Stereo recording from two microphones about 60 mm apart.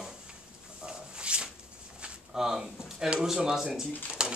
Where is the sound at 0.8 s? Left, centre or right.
Centre.